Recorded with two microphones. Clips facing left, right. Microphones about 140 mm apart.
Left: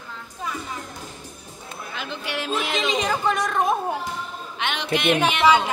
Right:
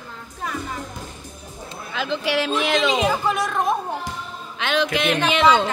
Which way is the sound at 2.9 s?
5° right (ahead or behind).